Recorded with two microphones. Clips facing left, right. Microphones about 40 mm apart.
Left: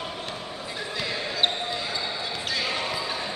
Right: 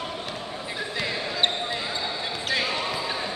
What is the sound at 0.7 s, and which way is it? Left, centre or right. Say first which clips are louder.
Basketball bounce: right 1 dB; centre.